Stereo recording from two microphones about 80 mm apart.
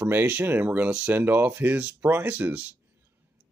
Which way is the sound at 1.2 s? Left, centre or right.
Right.